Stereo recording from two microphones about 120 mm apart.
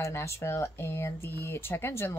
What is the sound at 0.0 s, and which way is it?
Speech, 25° left (ahead or behind).